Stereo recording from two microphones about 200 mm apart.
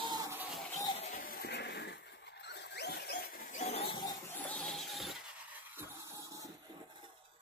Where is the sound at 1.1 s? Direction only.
45° left (ahead or behind); by 4.2 s 25° left (ahead or behind).